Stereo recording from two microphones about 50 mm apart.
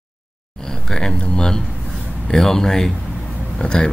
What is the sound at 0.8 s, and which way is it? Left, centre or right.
Speech, centre.